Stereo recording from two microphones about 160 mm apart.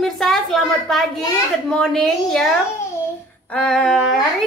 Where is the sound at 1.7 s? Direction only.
5° left (ahead or behind).